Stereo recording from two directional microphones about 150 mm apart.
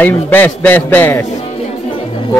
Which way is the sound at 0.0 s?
15° left (ahead or behind).